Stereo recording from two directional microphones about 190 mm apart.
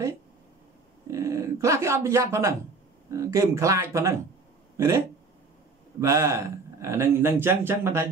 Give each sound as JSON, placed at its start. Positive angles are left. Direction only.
{"t": 1.0, "sound": "speech", "side_deg": -15}